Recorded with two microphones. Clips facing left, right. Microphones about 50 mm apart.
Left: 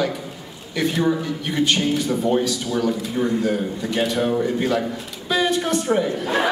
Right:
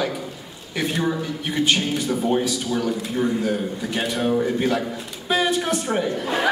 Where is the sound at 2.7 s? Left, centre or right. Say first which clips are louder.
Left 2 dB; centre.